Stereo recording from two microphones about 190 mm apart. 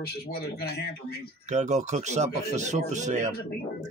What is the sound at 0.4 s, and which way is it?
Speech, 60° left (ahead or behind).